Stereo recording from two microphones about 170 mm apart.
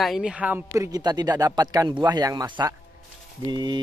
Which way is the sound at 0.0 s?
5° right (ahead or behind).